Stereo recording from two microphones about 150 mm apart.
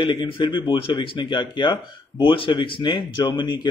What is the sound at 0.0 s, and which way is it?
Speech, 30° left (ahead or behind).